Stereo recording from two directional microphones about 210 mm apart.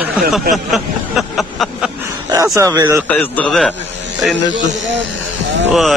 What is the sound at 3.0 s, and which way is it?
Speech, 10° left (ahead or behind).